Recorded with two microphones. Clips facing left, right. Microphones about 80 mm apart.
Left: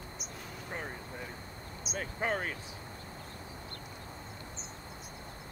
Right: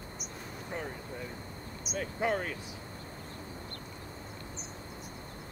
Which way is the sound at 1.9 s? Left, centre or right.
Left.